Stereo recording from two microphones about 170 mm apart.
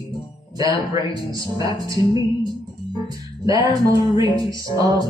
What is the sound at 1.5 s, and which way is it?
Music, 20° right (ahead or behind).